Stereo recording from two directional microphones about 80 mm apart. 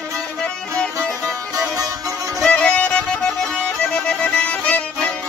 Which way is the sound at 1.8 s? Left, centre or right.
Right.